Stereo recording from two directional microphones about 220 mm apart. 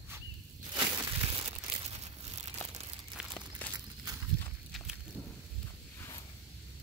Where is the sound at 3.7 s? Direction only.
15° right (ahead or behind).